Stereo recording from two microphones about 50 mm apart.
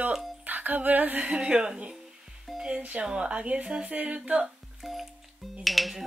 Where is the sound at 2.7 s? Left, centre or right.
Right.